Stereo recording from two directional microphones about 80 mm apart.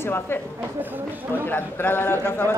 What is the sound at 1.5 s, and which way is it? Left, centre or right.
Speech, left.